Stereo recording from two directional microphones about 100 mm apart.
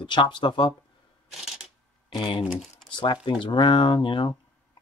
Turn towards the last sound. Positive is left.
turn(degrees=55)  # may be behind; listen again after turning